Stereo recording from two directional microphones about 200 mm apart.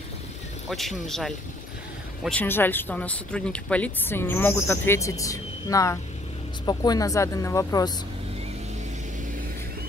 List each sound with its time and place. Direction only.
0.7 s speech: centre (ahead or behind); by 7.9 s 15° left (ahead or behind)